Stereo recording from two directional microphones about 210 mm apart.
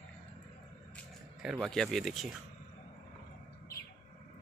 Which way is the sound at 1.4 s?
Centre (ahead or behind).